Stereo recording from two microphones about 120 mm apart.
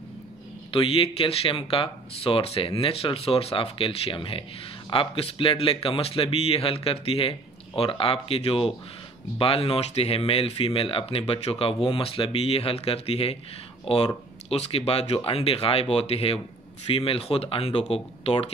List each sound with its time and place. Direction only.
0.7 s speech: 50° left (ahead or behind)